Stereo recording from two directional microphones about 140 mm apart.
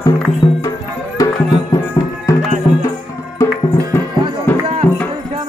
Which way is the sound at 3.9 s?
15° left (ahead or behind).